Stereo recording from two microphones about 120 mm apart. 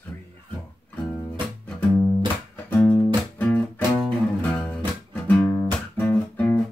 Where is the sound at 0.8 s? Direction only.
15° left (ahead or behind).